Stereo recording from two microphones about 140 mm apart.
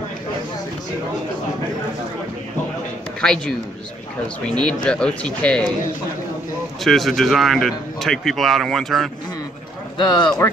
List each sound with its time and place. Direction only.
3.2 s a woman's voice: 5° left (ahead or behind)
6.8 s speech: centre (ahead or behind)
9.9 s speech: 30° left (ahead or behind)